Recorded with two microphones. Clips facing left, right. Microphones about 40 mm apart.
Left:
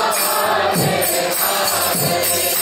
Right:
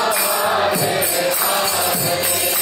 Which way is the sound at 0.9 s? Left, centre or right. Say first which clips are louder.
Even; centre.